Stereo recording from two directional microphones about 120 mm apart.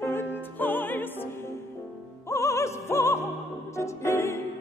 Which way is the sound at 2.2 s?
25° left (ahead or behind).